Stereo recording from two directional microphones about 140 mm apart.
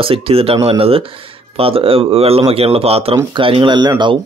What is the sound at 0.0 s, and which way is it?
Speech, 40° right (ahead or behind).